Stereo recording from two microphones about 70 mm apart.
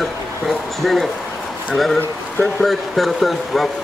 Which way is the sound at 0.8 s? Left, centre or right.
Centre.